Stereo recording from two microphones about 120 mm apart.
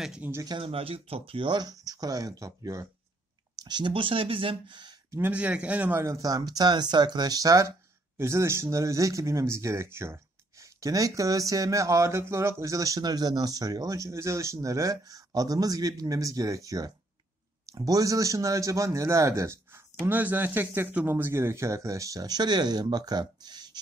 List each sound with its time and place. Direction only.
0.2 s speech: 20° right (ahead or behind)
0.5 s speech: 50° right (ahead or behind)
5.1 s speech: 15° right (ahead or behind); by 23.8 s 35° right (ahead or behind)